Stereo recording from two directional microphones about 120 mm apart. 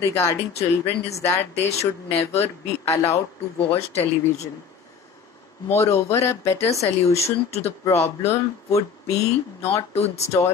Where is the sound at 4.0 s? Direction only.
65° left (ahead or behind).